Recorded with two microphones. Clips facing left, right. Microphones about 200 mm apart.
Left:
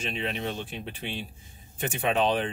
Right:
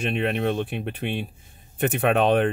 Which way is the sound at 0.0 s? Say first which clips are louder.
Right 8 dB; 60° right (ahead or behind).